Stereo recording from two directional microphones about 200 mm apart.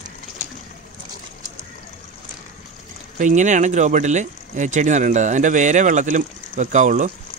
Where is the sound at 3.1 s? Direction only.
40° right (ahead or behind).